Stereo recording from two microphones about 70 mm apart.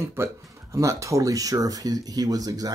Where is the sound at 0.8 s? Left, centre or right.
Right.